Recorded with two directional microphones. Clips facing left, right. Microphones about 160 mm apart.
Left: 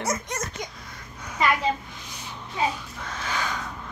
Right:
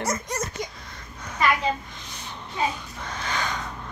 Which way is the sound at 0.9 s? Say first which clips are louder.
Left 1 dB; 10° left (ahead or behind).